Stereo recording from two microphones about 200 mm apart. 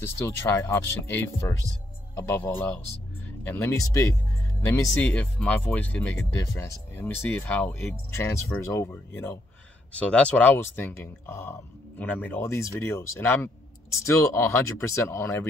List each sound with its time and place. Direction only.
0.0 s speech: 15° left (ahead or behind)